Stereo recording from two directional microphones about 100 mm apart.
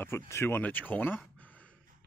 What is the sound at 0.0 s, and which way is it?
Speech, 25° left (ahead or behind).